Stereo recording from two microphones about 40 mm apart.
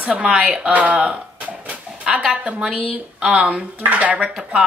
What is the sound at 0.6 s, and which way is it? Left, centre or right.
Speech, right.